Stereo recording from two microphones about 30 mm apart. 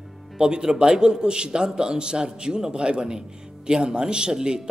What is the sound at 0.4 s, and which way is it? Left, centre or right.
A man's voice, right.